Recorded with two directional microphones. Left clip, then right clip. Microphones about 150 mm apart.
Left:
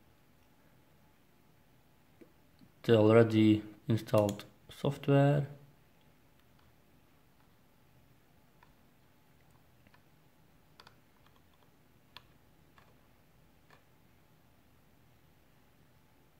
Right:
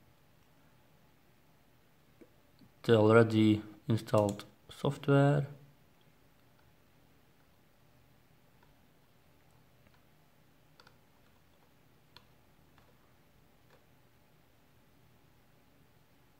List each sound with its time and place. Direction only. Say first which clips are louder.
2.8 s speech: even; centre (ahead or behind)
12.2 s tick-tock: left 5 dB; 35° right (ahead or behind)